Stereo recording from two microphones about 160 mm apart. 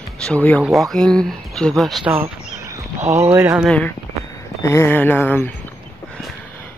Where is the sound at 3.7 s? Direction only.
10° left (ahead or behind).